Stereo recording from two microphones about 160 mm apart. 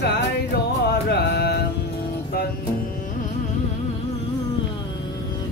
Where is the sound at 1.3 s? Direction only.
90° left.